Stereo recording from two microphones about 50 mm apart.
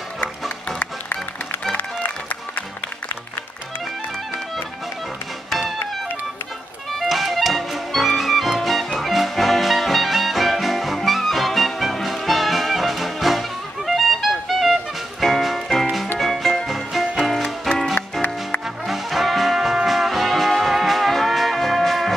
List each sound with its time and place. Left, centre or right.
1.8 s music: left
5.5 s music: centre
7.0 s music: centre
18.9 s brass instrument: centre